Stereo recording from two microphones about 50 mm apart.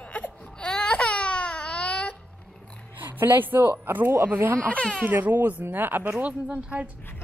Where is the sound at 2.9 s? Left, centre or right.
Right.